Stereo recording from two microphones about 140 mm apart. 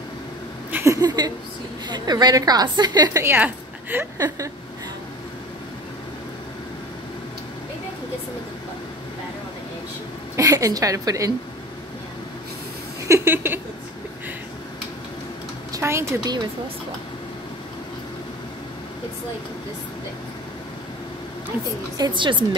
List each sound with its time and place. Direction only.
0.7 s a sound: 15° right (ahead or behind)
1.9 s a woman's voice: 30° right (ahead or behind)
10.3 s a woman's voice: 25° right (ahead or behind)
13.1 s a sound: 15° right (ahead or behind)
15.7 s speech: 20° right (ahead or behind)
21.9 s a woman's voice: 30° right (ahead or behind)